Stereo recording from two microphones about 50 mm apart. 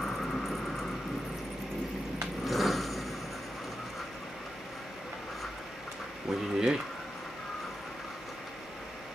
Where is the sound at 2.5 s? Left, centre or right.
Centre.